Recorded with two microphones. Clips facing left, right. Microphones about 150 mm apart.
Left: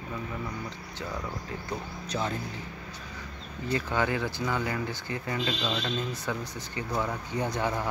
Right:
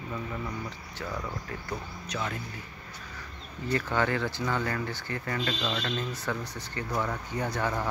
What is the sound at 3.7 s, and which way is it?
Speech, 15° left (ahead or behind).